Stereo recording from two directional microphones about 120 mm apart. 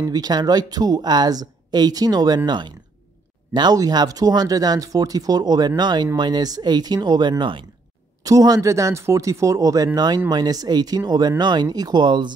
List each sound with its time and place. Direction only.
0.0 s speech: 30° right (ahead or behind)
8.2 s speech: 30° right (ahead or behind)